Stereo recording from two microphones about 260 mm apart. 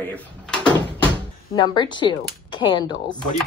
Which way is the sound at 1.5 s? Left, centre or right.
Centre.